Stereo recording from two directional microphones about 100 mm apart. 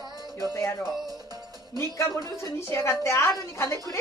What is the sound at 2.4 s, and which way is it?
Speech, 30° left (ahead or behind).